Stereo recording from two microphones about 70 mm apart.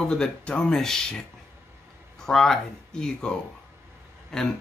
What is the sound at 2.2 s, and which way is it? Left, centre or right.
Speech, centre.